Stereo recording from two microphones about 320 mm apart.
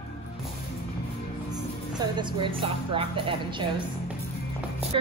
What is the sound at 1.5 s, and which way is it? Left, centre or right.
Speech, centre.